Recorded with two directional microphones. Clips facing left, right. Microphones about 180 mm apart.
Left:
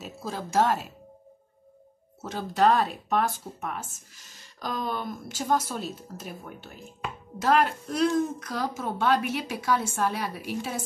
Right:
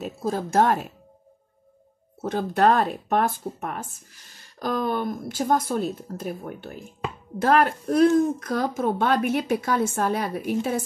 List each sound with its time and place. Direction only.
0.0 s speech: 50° right (ahead or behind)
2.2 s a woman's voice: 55° right (ahead or behind)